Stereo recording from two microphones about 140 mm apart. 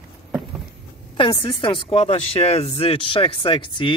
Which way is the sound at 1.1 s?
35° left (ahead or behind).